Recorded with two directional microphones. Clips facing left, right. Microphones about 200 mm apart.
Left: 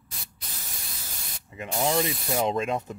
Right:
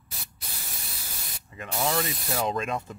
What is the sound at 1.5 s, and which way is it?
Speech, 20° left (ahead or behind).